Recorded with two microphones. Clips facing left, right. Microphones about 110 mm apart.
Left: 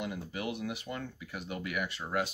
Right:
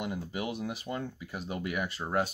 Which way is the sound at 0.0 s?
25° right (ahead or behind).